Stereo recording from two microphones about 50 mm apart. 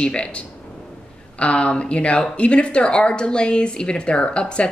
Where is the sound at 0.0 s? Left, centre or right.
Left.